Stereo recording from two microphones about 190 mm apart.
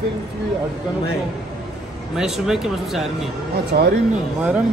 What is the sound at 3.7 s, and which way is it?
Speech, 55° right (ahead or behind).